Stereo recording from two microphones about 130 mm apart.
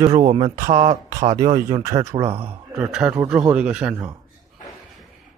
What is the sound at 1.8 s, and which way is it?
Speech, 25° right (ahead or behind).